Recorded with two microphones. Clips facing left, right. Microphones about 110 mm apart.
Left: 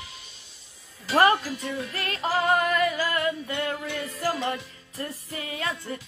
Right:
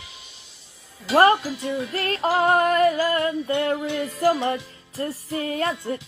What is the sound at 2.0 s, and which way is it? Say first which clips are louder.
Speech: right 5 dB; 40° right (ahead or behind).